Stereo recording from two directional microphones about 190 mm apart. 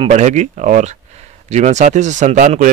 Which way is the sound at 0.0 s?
35° right (ahead or behind).